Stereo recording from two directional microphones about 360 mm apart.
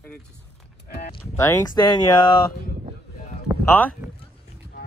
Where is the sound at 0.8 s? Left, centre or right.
Left.